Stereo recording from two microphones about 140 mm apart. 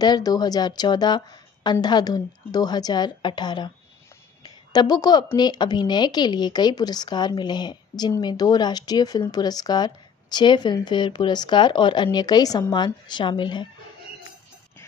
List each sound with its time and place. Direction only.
0.0 s a woman's voice: 30° left (ahead or behind)